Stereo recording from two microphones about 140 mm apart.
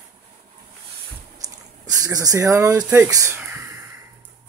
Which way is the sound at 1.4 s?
25° right (ahead or behind).